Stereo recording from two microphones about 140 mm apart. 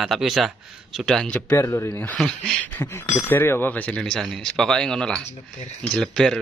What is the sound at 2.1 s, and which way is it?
Speech, 5° left (ahead or behind).